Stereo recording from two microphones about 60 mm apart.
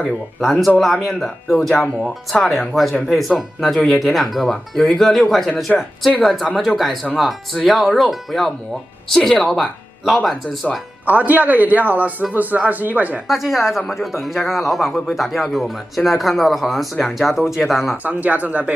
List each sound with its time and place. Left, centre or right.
0.4 s speech: centre
11.1 s a man's voice: right
13.3 s speech: centre
18.0 s a man's voice: right